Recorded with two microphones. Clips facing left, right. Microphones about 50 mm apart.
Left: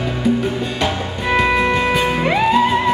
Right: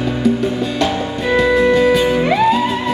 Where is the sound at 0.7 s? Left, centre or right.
Centre.